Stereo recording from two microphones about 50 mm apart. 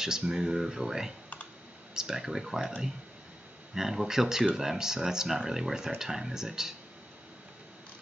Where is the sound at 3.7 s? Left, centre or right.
Centre.